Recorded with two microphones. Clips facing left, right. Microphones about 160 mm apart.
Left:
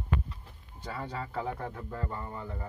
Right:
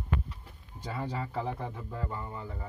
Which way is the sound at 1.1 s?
5° right (ahead or behind).